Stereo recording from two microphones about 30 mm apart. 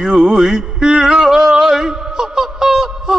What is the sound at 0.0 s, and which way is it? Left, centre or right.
Music, right.